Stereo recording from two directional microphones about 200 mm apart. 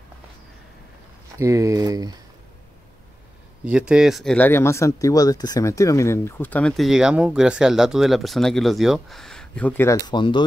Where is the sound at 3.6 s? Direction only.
5° right (ahead or behind).